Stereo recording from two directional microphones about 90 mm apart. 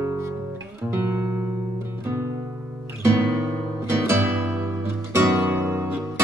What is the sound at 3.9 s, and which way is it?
Music, 30° right (ahead or behind).